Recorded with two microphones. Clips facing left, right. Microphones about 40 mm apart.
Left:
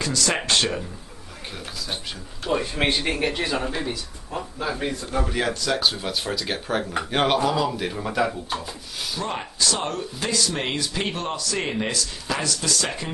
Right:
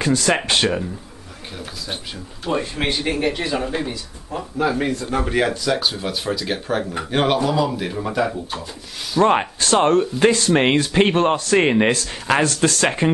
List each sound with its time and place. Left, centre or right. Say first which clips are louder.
0.0 s speech: right 6 dB; right
2.7 s speech: right 1 dB; centre
4.6 s a man's voice: right 8 dB; right
5.4 s speech: right 5 dB; centre
5.7 s speech: right 2 dB; centre
9.2 s speech: right 11 dB; right